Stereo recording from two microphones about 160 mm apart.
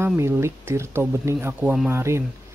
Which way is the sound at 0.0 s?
15° right (ahead or behind).